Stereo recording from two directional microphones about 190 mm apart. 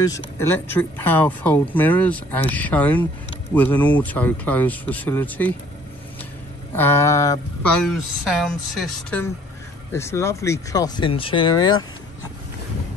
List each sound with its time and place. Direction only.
0.1 s speech: 10° left (ahead or behind)
6.7 s a sound: 10° left (ahead or behind)
7.7 s speech: centre (ahead or behind)
9.9 s speech: 15° left (ahead or behind)